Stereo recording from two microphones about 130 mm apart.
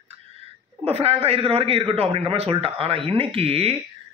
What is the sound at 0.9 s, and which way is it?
A man's voice, 50° right (ahead or behind).